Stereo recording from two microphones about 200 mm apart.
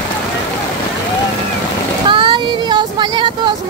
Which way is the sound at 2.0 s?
25° right (ahead or behind).